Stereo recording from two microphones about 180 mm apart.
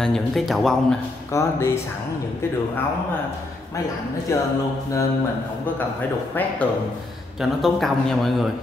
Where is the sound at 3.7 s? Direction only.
15° left (ahead or behind).